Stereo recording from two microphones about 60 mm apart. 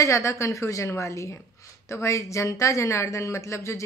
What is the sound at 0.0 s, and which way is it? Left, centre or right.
A woman's voice, left.